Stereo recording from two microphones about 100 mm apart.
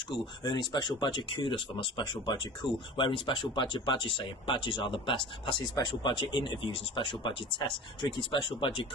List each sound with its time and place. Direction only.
0.4 s speech: 50° left (ahead or behind)